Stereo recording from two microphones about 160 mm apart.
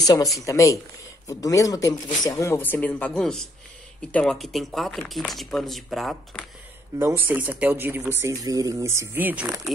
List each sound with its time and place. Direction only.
0.0 s speech: 25° left (ahead or behind); by 6.4 s centre (ahead or behind)
7.0 s speech: 15° right (ahead or behind)